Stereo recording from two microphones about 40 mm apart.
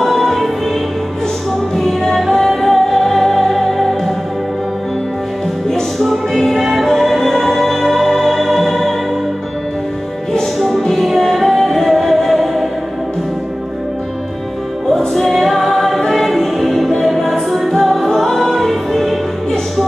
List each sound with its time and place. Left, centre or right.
0.0 s music: centre
1.8 s music: centre
5.7 s music: centre
10.8 s music: centre
15.1 s music: centre